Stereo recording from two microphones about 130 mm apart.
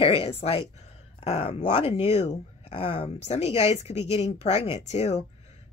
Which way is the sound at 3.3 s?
55° left (ahead or behind).